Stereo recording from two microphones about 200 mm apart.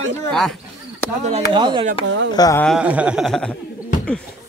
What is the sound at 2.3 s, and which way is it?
Speech, 20° left (ahead or behind).